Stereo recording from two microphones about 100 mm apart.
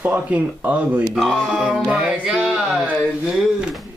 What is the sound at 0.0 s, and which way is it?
Speech, 15° right (ahead or behind).